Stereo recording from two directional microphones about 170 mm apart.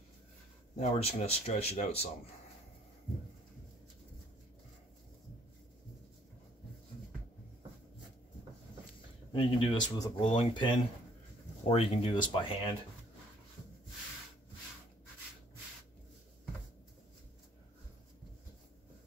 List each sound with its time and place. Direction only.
0.7 s speech: 35° left (ahead or behind)
9.3 s speech: 35° left (ahead or behind)